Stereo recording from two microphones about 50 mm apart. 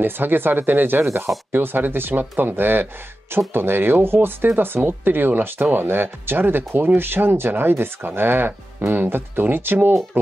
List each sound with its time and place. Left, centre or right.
0.0 s speech: right